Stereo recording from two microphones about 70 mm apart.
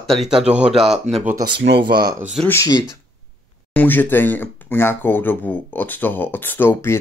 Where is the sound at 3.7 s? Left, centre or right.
Left.